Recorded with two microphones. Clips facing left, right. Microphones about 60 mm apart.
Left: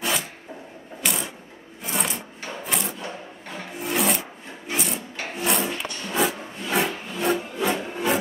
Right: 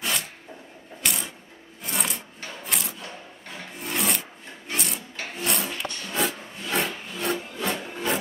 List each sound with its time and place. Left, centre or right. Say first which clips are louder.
0.0 s a sound: left 3 dB; centre
1.0 s mechanisms: left 2 dB; centre
1.8 s wood: left 3 dB; centre
2.6 s a sound: left 3 dB; centre
3.0 s music: left 5 dB; centre
3.8 s wood: left 4 dB; centre